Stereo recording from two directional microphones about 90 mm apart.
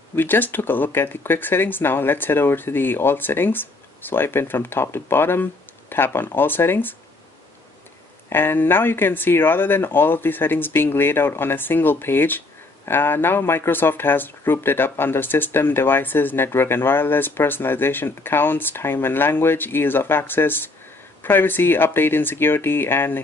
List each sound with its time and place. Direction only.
0.1 s speech: 25° left (ahead or behind)
8.3 s speech: 25° left (ahead or behind)